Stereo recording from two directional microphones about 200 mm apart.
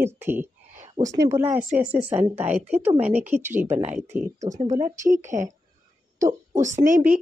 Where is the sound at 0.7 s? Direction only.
30° right (ahead or behind).